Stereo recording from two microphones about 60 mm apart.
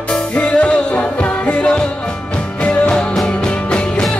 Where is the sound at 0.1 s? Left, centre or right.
Centre.